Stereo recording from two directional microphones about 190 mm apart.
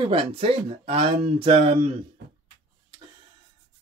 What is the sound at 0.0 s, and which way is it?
Speech, 25° right (ahead or behind).